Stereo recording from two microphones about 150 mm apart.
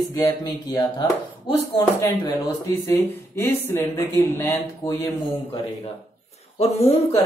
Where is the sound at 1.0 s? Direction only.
30° left (ahead or behind).